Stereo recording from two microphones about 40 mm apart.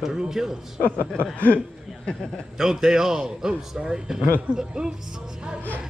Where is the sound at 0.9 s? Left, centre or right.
Left.